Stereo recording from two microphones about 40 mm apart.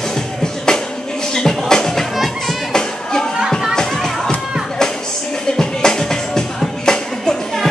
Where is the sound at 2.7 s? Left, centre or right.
Centre.